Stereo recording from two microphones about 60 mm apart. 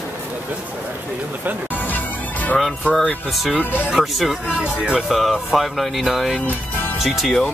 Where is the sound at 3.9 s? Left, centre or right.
Centre.